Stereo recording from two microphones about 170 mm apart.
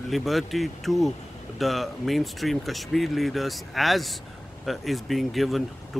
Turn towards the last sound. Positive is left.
turn(degrees=0)  # may be behind; listen again after turning